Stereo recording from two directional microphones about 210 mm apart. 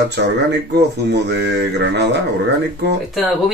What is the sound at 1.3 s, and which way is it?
Speech, 55° right (ahead or behind).